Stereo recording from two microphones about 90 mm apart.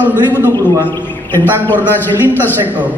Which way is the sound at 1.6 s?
20° left (ahead or behind).